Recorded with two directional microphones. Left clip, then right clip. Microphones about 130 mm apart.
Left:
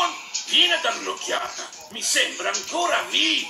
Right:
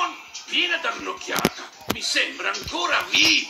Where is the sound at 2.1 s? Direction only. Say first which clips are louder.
Left 3 dB; 20° right (ahead or behind).